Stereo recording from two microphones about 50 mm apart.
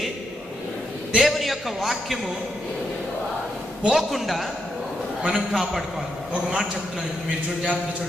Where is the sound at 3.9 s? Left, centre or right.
Centre.